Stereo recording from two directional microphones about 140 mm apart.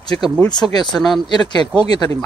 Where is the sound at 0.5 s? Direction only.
30° left (ahead or behind).